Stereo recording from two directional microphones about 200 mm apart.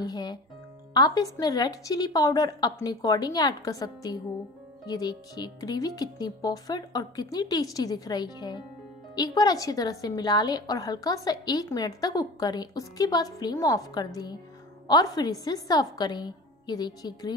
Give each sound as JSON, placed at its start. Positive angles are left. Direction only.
{"t": 0.0, "sound": "music", "side_deg": 20}
{"t": 0.9, "sound": "a woman's voice", "side_deg": 20}